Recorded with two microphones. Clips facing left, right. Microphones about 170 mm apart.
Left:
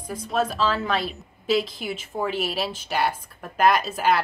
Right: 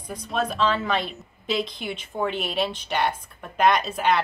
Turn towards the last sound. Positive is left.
turn(degrees=5)  # may be behind; listen again after turning